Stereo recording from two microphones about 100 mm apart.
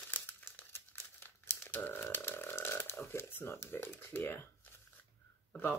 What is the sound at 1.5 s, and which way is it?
Speech, 20° left (ahead or behind).